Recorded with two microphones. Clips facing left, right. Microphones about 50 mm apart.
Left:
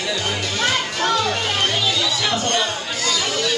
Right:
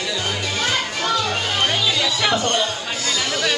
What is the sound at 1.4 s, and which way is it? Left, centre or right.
Music, centre.